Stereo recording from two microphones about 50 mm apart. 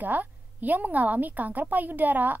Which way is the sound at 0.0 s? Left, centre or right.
Right.